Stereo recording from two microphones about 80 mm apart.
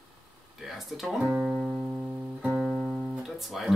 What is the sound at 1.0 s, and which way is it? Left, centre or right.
Speech, centre.